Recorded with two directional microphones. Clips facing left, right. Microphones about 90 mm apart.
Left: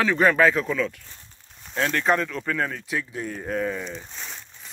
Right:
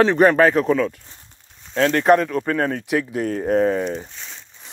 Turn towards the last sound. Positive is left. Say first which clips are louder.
# left 1 dB
turn(degrees=5)  # may be behind; listen again after turning